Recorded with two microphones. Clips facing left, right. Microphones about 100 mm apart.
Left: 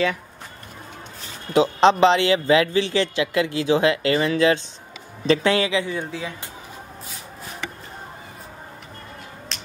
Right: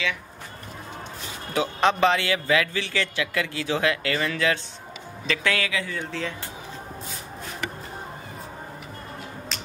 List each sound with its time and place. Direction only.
1.5 s a man's voice: 20° left (ahead or behind)